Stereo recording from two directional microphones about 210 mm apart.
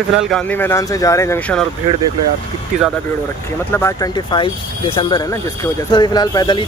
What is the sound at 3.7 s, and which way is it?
Speech, 10° left (ahead or behind).